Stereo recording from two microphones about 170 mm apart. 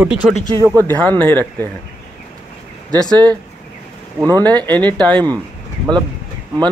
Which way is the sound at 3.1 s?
25° right (ahead or behind).